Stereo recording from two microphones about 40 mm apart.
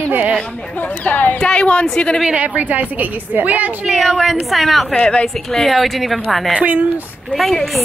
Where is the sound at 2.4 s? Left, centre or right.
Right.